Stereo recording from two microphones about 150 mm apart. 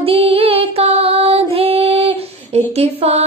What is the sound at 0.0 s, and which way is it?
Music, 40° right (ahead or behind).